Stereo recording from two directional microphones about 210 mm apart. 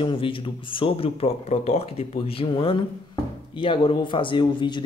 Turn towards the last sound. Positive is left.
turn(degrees=20)  # may be behind; listen again after turning